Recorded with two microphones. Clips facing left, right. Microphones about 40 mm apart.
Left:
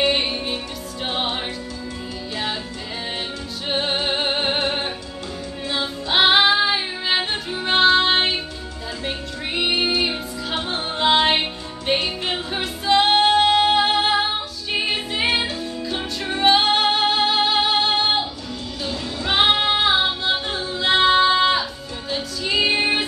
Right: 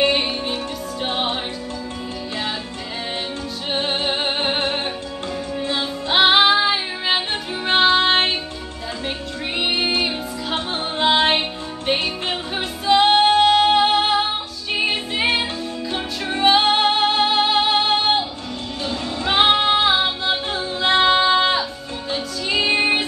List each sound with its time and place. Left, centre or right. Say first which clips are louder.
0.1 s music: right 1 dB; centre
3.6 s music: even; centre
6.0 s music: right 1 dB; centre
9.6 s music: even; centre
15.9 s music: right 1 dB; centre
19.3 s music: right 2 dB; centre